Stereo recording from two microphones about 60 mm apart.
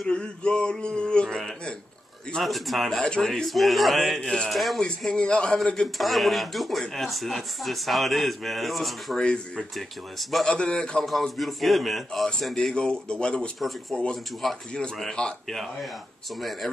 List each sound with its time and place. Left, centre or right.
0.0 s male singing: centre
2.4 s speech: centre
4.8 s male singing: centre
5.9 s speech: centre
10.4 s male singing: centre
11.1 s speech: centre
12.5 s male singing: centre
13.6 s speech: centre
15.2 s male singing: centre
16.3 s speech: centre